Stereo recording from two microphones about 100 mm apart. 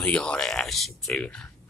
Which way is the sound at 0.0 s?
10° left (ahead or behind).